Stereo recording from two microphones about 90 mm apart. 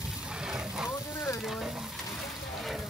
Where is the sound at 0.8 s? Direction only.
35° left (ahead or behind).